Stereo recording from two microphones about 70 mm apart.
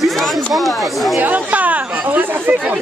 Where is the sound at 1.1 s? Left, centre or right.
Right.